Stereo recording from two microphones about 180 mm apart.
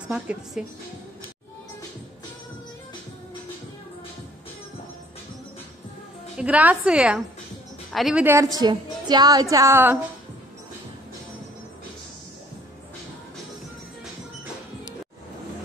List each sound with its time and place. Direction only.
0.1 s a woman's voice: 5° right (ahead or behind)
6.3 s a woman's voice: 10° right (ahead or behind)
8.5 s speech: 25° right (ahead or behind)